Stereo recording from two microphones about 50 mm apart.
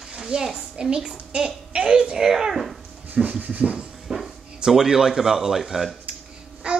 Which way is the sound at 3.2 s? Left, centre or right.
Right.